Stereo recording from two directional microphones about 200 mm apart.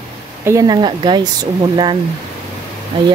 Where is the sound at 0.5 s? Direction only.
20° right (ahead or behind).